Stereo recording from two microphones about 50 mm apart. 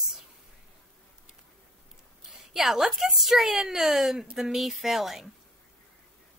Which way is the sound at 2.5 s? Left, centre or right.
Centre.